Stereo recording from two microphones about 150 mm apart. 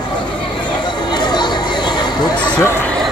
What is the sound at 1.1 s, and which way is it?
Chatter, 30° left (ahead or behind).